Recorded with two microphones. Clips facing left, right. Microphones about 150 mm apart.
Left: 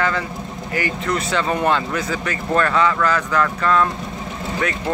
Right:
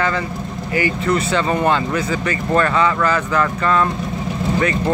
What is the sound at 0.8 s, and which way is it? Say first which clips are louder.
Speech: right 4 dB; centre (ahead or behind).